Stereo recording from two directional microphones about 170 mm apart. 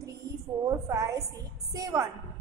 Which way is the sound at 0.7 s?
20° right (ahead or behind).